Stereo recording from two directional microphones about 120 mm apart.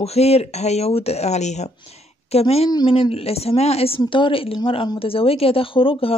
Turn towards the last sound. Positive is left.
turn(degrees=50)  # may be behind; listen again after turning